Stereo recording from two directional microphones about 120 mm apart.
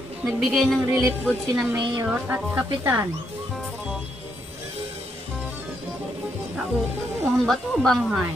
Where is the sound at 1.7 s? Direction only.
35° right (ahead or behind).